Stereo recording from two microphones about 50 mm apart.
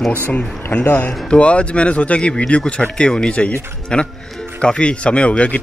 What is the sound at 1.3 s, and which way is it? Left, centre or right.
Speech, left.